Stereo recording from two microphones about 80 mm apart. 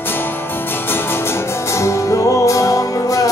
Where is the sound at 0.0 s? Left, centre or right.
Left.